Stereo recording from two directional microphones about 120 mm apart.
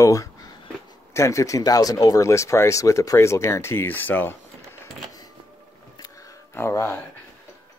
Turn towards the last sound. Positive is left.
turn(degrees=20)  # may be behind; listen again after turning